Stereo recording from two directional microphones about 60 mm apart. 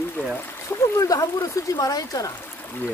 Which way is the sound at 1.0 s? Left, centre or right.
Left.